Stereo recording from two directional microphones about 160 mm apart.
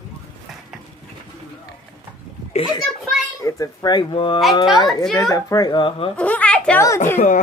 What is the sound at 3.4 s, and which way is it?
Speech, 20° left (ahead or behind).